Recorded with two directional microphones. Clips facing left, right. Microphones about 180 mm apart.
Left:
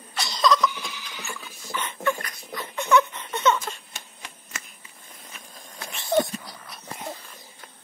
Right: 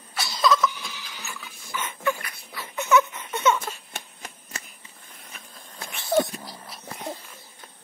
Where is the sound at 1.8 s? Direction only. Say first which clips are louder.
Left 1 dB; 5° right (ahead or behind).